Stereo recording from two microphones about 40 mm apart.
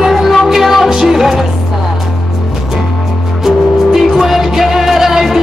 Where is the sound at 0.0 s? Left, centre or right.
Centre.